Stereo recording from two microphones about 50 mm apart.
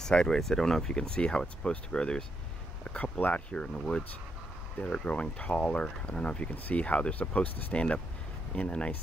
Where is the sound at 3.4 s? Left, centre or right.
Centre.